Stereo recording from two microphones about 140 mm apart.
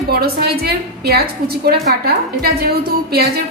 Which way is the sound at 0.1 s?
90° right.